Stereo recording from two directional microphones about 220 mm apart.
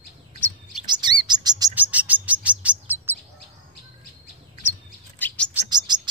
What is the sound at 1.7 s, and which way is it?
Chirp, 5° right (ahead or behind).